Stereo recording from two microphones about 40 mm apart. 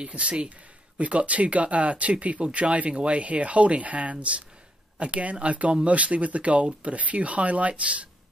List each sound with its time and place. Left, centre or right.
0.0 s speech: right